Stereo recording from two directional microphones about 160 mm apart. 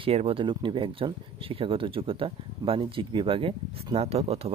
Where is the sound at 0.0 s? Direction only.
40° right (ahead or behind).